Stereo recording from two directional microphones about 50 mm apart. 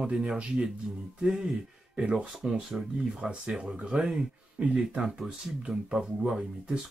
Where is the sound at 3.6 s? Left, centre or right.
Right.